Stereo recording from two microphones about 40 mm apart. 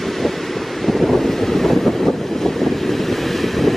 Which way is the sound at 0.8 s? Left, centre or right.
Centre.